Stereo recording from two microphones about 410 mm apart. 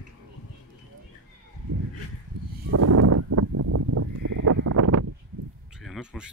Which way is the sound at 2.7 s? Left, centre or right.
Right.